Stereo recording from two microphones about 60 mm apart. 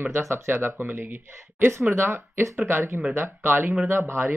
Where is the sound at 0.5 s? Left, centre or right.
Right.